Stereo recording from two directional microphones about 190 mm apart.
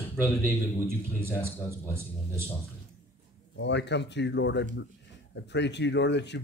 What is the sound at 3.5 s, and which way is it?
A man's voice, 65° left (ahead or behind).